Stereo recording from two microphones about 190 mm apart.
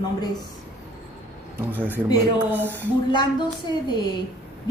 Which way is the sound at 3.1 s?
25° left (ahead or behind).